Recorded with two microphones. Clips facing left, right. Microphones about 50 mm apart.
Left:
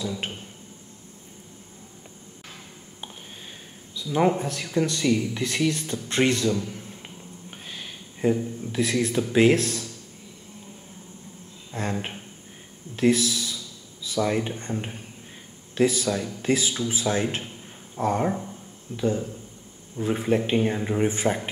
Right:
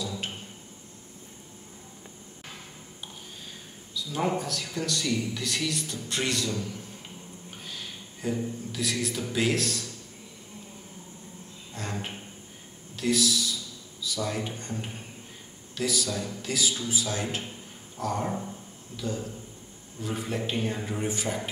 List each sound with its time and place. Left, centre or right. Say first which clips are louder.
0.0 s a sound: left 4 dB; left
3.9 s speech: left 6 dB; left
7.7 s speech: left 1 dB; left
11.7 s speech: left 6 dB; left